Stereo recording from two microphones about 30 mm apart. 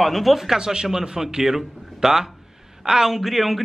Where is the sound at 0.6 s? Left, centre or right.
Right.